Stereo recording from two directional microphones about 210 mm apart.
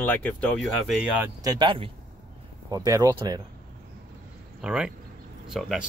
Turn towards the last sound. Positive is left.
turn(degrees=0)  # may be behind; listen again after turning